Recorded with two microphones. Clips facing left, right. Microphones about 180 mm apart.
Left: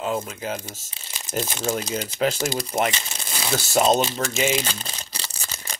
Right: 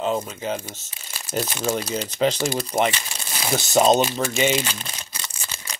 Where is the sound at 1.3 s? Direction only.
10° right (ahead or behind).